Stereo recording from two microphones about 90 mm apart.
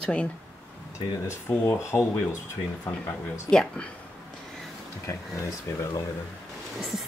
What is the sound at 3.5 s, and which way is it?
Speech, 10° left (ahead or behind).